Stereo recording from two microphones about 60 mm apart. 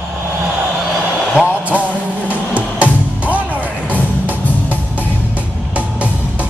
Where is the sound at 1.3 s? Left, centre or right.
Right.